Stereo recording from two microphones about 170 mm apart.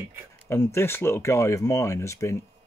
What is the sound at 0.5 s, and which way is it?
Speech, 15° left (ahead or behind).